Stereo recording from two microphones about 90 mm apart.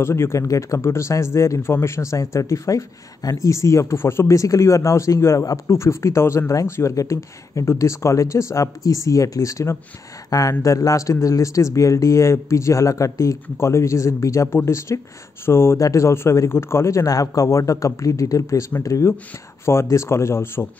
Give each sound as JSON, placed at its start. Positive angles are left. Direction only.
{"t": 0.0, "sound": "speech", "side_deg": 30}